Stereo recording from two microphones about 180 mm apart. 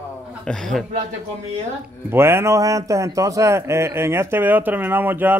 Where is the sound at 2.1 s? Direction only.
15° right (ahead or behind).